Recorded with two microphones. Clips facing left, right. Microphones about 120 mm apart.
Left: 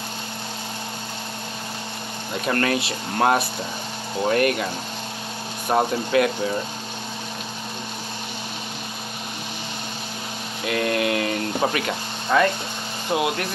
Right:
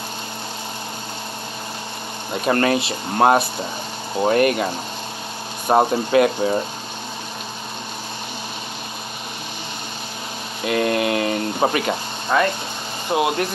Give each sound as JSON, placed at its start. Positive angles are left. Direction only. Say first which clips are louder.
{"t": 2.5, "sound": "speech", "louder": "right 4 dB", "side_deg": -20}
{"t": 4.2, "sound": "a sound", "louder": "right 3 dB", "side_deg": -15}
{"t": 5.7, "sound": "speech", "louder": "right 4 dB", "side_deg": -25}
{"t": 10.7, "sound": "a sound", "louder": "right 3 dB", "side_deg": -15}
{"t": 11.6, "sound": "speech", "louder": "right 6 dB", "side_deg": -20}
{"t": 13.1, "sound": "speech", "louder": "right 3 dB", "side_deg": -25}